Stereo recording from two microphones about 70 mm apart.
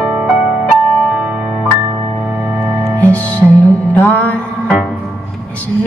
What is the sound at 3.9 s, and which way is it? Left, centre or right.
Mantra, left.